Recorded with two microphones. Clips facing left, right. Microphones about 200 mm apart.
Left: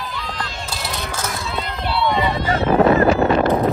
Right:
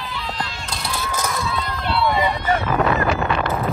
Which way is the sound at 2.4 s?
30° left (ahead or behind).